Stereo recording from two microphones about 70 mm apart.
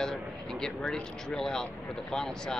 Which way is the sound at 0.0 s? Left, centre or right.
Centre.